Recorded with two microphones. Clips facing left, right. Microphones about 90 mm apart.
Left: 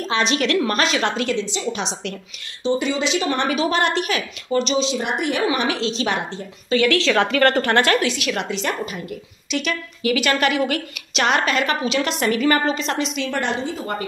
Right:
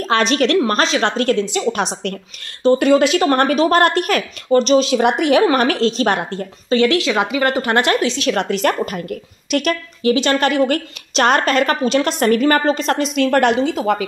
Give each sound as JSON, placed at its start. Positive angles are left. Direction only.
{"t": 0.0, "sound": "a woman's voice", "side_deg": -45}
{"t": 1.5, "sound": "a woman's voice", "side_deg": -55}
{"t": 4.9, "sound": "a woman's voice", "side_deg": -75}
{"t": 6.7, "sound": "speech", "side_deg": -30}
{"t": 7.0, "sound": "a woman's voice", "side_deg": -15}
{"t": 8.3, "sound": "a woman's voice", "side_deg": -45}
{"t": 10.0, "sound": "a woman's voice", "side_deg": -30}